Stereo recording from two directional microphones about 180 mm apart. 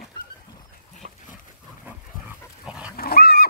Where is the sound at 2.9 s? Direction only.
60° left (ahead or behind).